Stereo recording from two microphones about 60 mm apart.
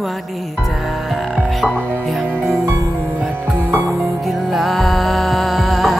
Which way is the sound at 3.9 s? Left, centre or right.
Centre.